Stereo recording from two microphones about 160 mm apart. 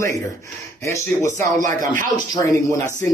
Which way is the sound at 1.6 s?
55° right (ahead or behind).